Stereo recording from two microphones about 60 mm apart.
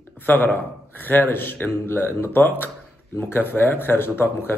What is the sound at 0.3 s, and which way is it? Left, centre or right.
A man's voice, left.